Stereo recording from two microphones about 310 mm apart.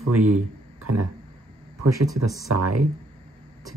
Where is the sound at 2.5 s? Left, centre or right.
Right.